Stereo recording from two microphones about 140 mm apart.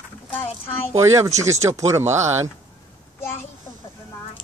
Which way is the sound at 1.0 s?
20° right (ahead or behind).